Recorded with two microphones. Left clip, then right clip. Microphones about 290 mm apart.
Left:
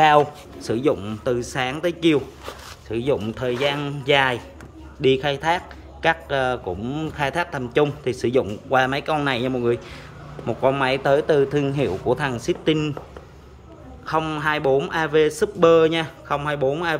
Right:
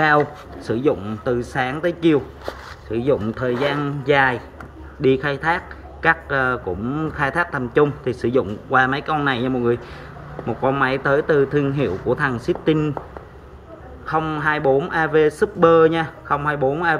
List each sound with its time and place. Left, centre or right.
0.0 s speech: centre
14.0 s speech: centre